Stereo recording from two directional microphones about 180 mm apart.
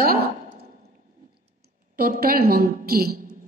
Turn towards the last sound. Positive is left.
turn(degrees=-60)  # may be behind; listen again after turning